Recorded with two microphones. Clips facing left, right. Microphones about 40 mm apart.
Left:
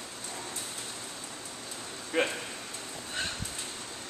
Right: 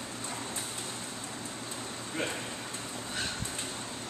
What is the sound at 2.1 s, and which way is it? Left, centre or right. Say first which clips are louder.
Speech: left 6 dB; left.